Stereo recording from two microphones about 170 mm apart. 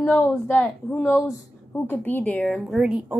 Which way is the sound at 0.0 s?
5° left (ahead or behind).